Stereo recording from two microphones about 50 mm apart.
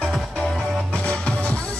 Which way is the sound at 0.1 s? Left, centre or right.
Centre.